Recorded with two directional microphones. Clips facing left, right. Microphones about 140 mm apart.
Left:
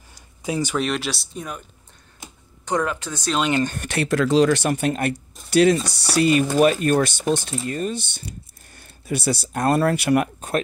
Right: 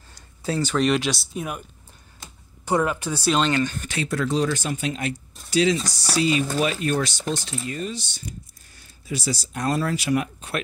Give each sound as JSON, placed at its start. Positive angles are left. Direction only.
{"t": 0.1, "sound": "a sound", "side_deg": 15}
{"t": 0.7, "sound": "speech", "side_deg": 0}
{"t": 2.6, "sound": "speech", "side_deg": -10}
{"t": 3.6, "sound": "speech", "side_deg": 60}